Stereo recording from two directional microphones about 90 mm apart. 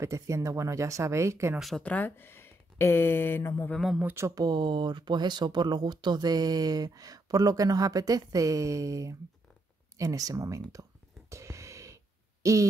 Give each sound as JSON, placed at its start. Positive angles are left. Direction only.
{"t": 0.0, "sound": "speech", "side_deg": -35}
{"t": 1.8, "sound": "speech", "side_deg": 15}
{"t": 4.0, "sound": "speech", "side_deg": -25}
{"t": 4.4, "sound": "speech", "side_deg": -55}
{"t": 10.7, "sound": "a sound", "side_deg": -35}
{"t": 12.4, "sound": "speech", "side_deg": -35}